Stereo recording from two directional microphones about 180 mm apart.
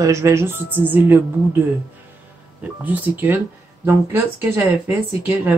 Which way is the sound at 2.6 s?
10° right (ahead or behind).